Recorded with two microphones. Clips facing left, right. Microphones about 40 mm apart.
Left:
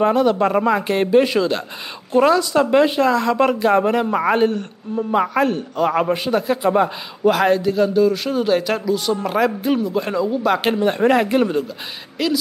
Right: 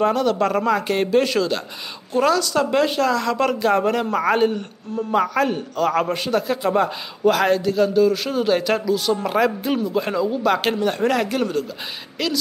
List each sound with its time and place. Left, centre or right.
0.0 s a man's voice: centre
10.8 s speech: centre
12.2 s a man's voice: centre